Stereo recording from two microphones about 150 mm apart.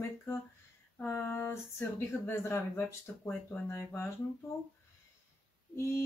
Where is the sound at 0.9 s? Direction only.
15° left (ahead or behind).